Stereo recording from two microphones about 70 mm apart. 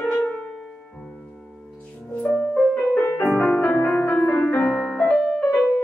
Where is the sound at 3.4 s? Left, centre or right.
Centre.